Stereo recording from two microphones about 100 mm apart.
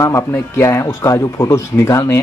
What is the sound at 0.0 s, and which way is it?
Speech, 30° left (ahead or behind).